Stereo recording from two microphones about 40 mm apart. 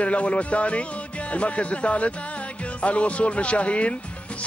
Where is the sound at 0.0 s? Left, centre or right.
Left.